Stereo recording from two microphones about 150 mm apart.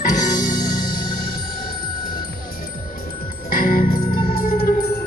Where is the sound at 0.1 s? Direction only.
60° left (ahead or behind).